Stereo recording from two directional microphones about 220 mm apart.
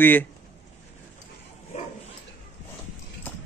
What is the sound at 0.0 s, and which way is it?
Speech, 10° left (ahead or behind).